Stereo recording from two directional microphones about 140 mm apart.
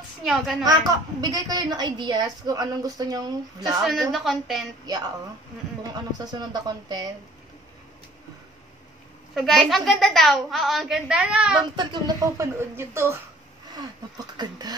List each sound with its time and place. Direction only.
0.2 s a woman's voice: centre (ahead or behind)
1.2 s a woman's voice: 25° right (ahead or behind)
3.8 s a woman's voice: centre (ahead or behind)
4.8 s a woman's voice: 30° right (ahead or behind)
6.5 s a woman's voice: 30° right (ahead or behind)
9.3 s a woman's voice: centre (ahead or behind)
11.7 s a woman's voice: 30° right (ahead or behind)
13.7 s a woman's voice: 30° right (ahead or behind)